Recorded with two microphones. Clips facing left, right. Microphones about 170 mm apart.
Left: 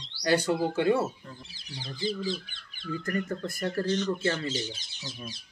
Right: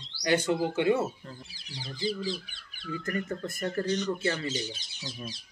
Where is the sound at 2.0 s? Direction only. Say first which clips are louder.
Left 1 dB; 10° right (ahead or behind).